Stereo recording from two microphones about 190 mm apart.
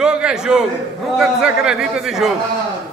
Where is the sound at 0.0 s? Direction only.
5° right (ahead or behind).